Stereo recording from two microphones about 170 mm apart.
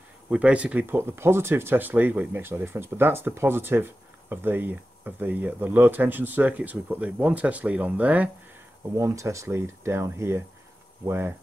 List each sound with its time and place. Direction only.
0.3 s speech: 5° right (ahead or behind)